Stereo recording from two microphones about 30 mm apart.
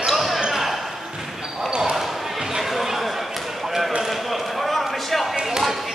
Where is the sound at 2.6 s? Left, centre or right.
Centre.